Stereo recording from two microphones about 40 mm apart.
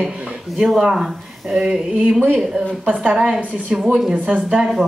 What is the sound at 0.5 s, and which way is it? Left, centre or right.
Speech, centre.